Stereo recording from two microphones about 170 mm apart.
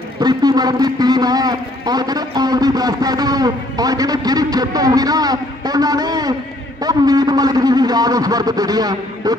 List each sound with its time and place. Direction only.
0.2 s a man's voice: 25° right (ahead or behind)